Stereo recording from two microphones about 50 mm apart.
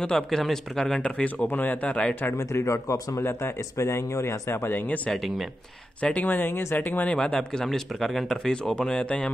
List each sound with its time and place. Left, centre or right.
0.0 s speech: centre
1.2 s speech: left
2.3 s speech: left
3.3 s speech: left
3.7 s speech: left
4.7 s speech: left
5.1 s speech: centre
5.9 s speech: left
6.2 s speech: left
7.3 s speech: centre
8.5 s speech: centre